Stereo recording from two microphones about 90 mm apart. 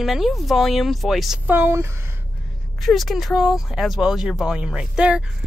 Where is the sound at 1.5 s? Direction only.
25° right (ahead or behind).